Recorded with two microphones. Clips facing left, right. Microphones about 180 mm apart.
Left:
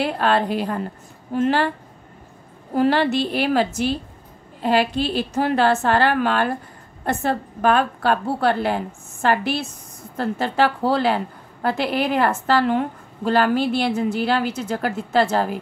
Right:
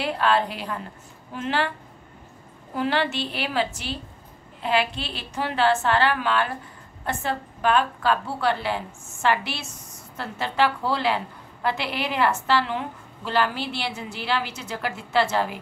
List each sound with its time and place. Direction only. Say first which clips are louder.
0.0 s a woman's voice: left 3 dB; 45° left (ahead or behind)
2.7 s a woman's voice: left 7 dB; 40° left (ahead or behind)